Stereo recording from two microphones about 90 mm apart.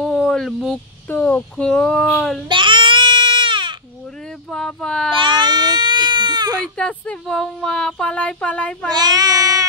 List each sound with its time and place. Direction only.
0.0 s a sound: 5° left (ahead or behind)
1.2 s speech: 10° left (ahead or behind)
2.4 s baby cry: 65° right (ahead or behind)
4.5 s speech: 5° left (ahead or behind)
5.1 s baby cry: 65° right (ahead or behind)
6.6 s speech: 10° left (ahead or behind)
8.9 s speech: 50° right (ahead or behind)